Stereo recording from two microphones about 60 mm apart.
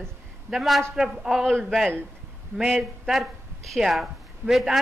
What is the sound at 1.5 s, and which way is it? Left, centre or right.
Speech, centre.